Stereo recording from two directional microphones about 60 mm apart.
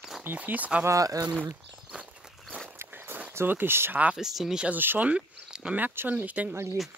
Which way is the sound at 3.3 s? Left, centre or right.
Right.